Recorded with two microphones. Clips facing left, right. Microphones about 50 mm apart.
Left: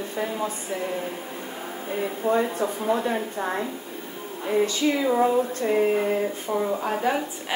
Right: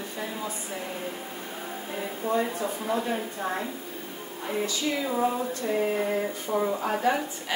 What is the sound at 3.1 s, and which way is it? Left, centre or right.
Female singing, left.